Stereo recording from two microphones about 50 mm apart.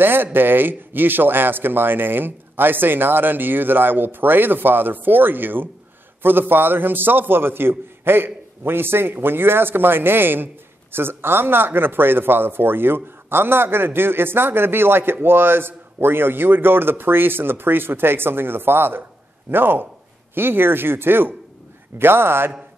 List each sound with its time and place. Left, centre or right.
0.0 s a man's voice: right